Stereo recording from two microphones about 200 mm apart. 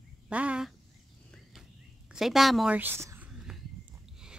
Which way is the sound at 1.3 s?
Centre (ahead or behind).